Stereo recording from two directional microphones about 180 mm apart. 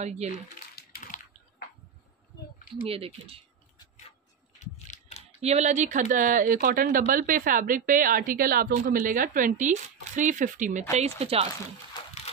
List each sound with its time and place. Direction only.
0.0 s speech: 40° right (ahead or behind)
0.7 s bathtub: 50° left (ahead or behind)
2.9 s speech: 30° right (ahead or behind)
4.6 s a sound: 40° left (ahead or behind)
5.4 s speech: 40° right (ahead or behind)
11.9 s a sound: 20° left (ahead or behind)